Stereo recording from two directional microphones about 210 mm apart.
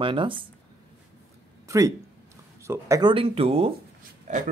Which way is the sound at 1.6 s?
15° right (ahead or behind).